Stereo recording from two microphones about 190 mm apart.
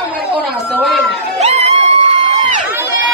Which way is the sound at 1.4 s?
35° right (ahead or behind).